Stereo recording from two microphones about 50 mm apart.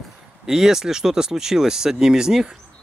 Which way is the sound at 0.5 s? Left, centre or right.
Centre.